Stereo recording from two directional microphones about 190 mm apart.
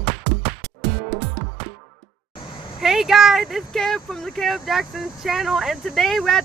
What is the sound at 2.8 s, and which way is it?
Speech, centre (ahead or behind).